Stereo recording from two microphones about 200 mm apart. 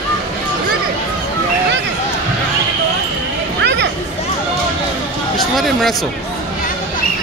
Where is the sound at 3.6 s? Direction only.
60° right (ahead or behind).